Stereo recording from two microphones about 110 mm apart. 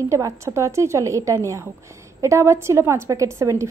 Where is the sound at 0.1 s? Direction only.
25° right (ahead or behind).